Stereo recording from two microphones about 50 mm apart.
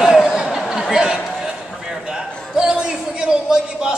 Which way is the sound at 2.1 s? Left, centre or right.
Centre.